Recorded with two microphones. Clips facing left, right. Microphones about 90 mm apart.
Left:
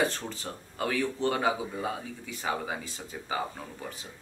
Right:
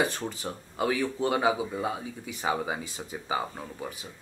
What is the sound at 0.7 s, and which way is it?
A man's voice, 10° right (ahead or behind).